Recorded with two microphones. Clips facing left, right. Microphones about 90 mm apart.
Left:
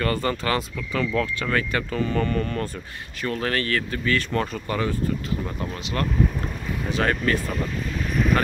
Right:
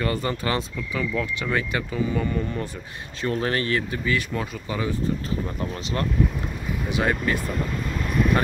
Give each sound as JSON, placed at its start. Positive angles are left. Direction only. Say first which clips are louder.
{"t": 0.0, "sound": "speech", "louder": "left 1 dB", "side_deg": -20}
{"t": 3.2, "sound": "speech", "louder": "right 1 dB", "side_deg": -25}
{"t": 6.9, "sound": "speech", "louder": "left 1 dB", "side_deg": -15}